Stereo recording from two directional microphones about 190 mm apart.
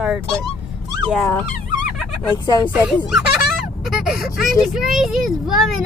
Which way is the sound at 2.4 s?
25° left (ahead or behind).